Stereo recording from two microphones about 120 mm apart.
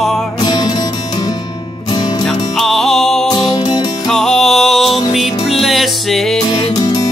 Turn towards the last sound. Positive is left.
turn(degrees=30)  # may be behind; listen again after turning